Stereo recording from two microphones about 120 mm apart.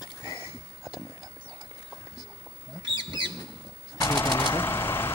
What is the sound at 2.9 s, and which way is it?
Bird, 40° right (ahead or behind).